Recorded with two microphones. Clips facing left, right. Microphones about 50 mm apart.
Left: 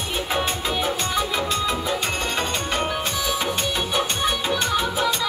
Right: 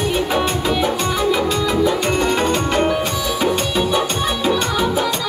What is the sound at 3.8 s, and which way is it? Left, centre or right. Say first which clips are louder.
Music: right 5 dB; centre.